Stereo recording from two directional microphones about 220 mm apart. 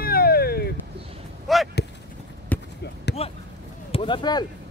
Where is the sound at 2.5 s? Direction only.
5° left (ahead or behind).